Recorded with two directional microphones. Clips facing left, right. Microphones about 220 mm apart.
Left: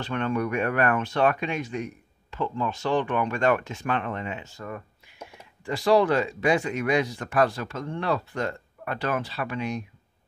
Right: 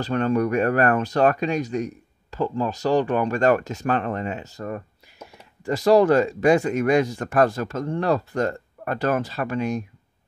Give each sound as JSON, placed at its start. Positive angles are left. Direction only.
{"t": 0.0, "sound": "speech", "side_deg": -40}